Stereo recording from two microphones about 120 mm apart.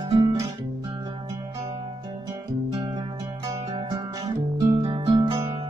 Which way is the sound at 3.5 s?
50° right (ahead or behind).